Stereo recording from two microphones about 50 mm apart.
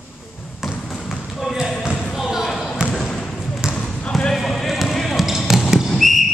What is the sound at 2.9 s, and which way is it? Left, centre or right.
Basketball bounce, centre.